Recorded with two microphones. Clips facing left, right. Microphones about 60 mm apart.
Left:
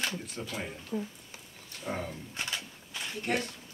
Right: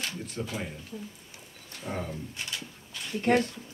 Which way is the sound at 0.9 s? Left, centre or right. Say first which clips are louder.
Left 10 dB; left.